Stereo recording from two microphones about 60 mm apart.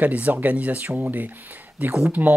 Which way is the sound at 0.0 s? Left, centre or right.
Right.